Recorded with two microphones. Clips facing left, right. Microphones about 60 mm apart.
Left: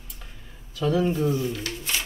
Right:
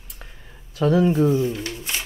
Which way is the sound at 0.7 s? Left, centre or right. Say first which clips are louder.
Right 5 dB; right.